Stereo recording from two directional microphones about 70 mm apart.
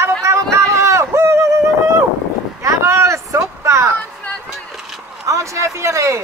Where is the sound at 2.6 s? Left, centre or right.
Right.